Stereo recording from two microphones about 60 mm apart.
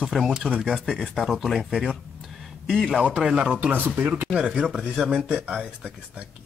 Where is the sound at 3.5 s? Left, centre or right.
Right.